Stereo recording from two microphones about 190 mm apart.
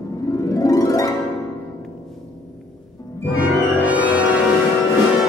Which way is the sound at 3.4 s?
5° right (ahead or behind).